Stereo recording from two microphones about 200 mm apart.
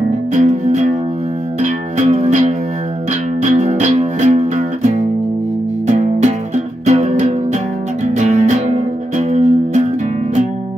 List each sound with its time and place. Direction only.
0.3 s music: 35° right (ahead or behind)